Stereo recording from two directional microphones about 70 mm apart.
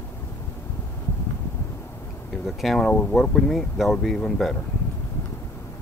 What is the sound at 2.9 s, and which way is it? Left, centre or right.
Speech, centre.